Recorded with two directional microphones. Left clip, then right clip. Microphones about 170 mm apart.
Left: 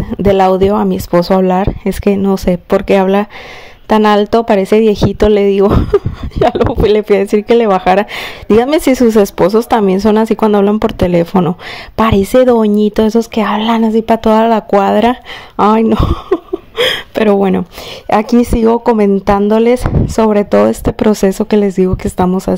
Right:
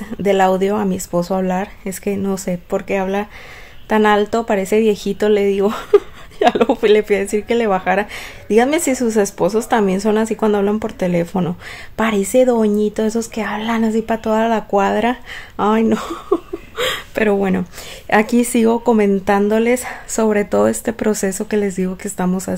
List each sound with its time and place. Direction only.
0.2 s a woman's voice: 40° left (ahead or behind)
15.5 s speech: 35° left (ahead or behind)
18.1 s a woman's voice: 30° left (ahead or behind)